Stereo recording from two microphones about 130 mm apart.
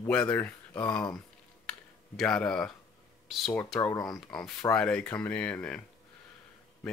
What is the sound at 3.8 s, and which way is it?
Speech, 20° left (ahead or behind).